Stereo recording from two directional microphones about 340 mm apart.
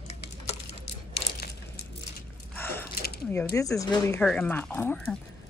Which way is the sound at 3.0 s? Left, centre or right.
Left.